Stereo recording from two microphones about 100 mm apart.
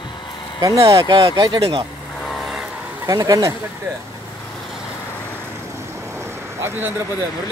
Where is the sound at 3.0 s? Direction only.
35° right (ahead or behind).